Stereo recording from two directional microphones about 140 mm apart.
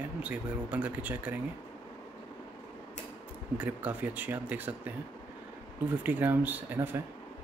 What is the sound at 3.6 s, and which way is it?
Speech, 10° right (ahead or behind).